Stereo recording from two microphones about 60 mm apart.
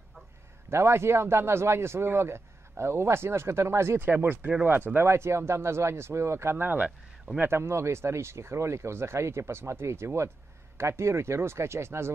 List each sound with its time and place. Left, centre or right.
0.7 s a man's voice: right
5.0 s a man's voice: right